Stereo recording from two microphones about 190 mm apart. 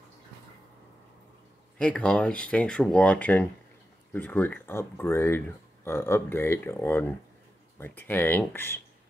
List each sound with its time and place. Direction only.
1.8 s speech: 5° left (ahead or behind)